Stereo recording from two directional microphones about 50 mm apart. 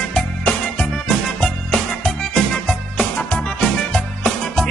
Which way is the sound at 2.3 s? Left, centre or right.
Centre.